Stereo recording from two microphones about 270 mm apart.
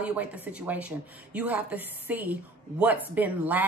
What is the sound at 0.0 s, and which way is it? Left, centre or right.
A woman's voice, centre.